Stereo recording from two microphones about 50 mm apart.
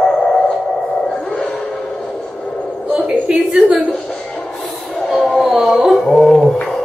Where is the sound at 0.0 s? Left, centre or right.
Centre.